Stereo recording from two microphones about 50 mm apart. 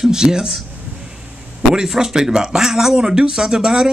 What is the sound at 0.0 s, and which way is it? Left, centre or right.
Speech, centre.